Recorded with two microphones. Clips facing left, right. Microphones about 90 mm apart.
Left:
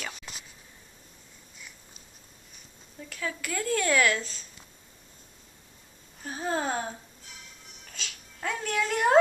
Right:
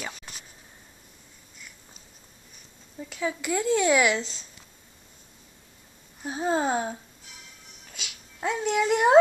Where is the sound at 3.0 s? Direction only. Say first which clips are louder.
Right 6 dB; 20° right (ahead or behind).